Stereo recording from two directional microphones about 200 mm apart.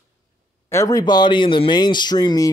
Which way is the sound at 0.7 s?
15° left (ahead or behind).